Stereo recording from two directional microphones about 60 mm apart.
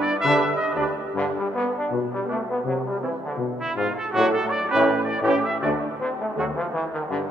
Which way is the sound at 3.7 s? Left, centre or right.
Centre.